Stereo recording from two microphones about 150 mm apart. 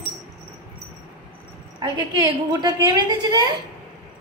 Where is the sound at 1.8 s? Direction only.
30° right (ahead or behind).